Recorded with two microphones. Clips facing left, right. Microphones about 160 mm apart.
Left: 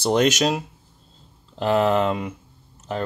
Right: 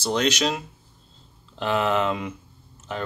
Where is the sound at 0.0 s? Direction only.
50° left (ahead or behind).